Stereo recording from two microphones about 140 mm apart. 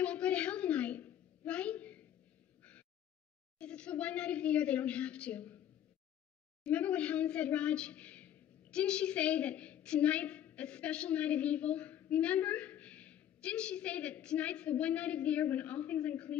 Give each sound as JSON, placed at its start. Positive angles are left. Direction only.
{"t": 0.0, "sound": "a sound", "side_deg": 10}
{"t": 3.5, "sound": "a woman's voice", "side_deg": 5}
{"t": 6.6, "sound": "a woman's voice", "side_deg": 10}